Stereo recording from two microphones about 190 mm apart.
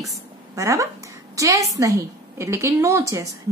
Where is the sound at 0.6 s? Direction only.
15° right (ahead or behind).